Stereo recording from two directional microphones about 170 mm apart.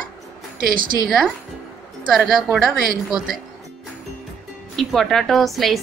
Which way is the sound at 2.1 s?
Centre (ahead or behind).